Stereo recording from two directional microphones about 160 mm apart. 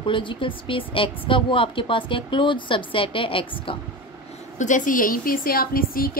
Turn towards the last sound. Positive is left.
turn(degrees=65)  # may be behind; listen again after turning